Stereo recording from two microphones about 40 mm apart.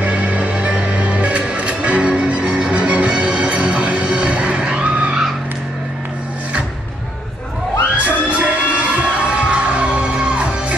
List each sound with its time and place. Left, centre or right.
0.0 s music: right
7.9 s music: right